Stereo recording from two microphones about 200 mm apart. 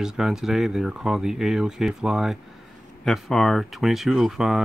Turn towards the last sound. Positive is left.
turn(degrees=0)  # may be behind; listen again after turning